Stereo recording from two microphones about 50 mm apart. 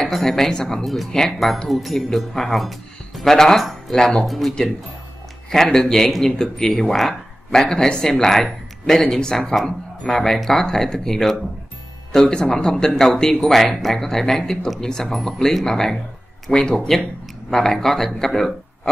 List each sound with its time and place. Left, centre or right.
0.0 s speech: centre
1.1 s a man's voice: centre
16.7 s speech: centre